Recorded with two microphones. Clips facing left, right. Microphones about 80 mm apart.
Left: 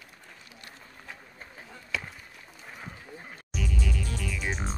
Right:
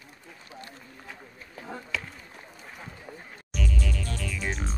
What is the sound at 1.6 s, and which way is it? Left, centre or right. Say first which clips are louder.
Speech: right 11 dB; left.